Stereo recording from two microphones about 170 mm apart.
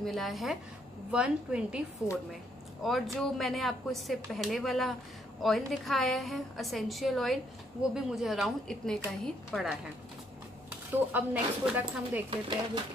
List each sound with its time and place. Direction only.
0.0 s speech: centre (ahead or behind)
10.9 s speech: 10° right (ahead or behind)
12.3 s speech: 30° right (ahead or behind)